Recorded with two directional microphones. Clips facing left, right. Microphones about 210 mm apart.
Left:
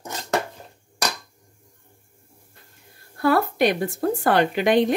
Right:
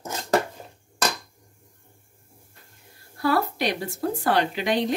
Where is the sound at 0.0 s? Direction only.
5° right (ahead or behind).